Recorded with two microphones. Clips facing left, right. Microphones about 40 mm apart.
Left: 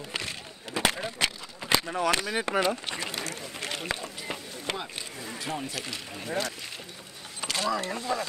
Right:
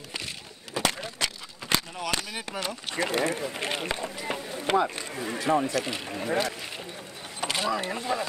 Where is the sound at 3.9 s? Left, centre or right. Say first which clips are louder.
Right 4 dB; centre.